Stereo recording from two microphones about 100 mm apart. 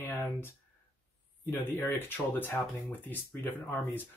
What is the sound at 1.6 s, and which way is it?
Speech, 20° left (ahead or behind).